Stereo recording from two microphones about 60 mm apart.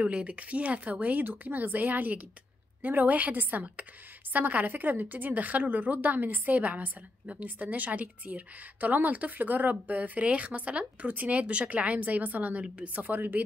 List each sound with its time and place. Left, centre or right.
0.0 s a woman's voice: right